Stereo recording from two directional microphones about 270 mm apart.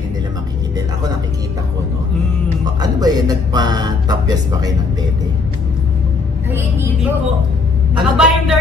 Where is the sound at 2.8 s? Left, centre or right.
Centre.